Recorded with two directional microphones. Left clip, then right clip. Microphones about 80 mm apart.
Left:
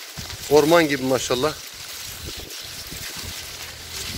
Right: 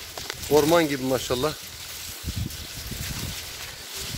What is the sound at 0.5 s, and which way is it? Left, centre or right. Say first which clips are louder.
Speech: left 4 dB; centre.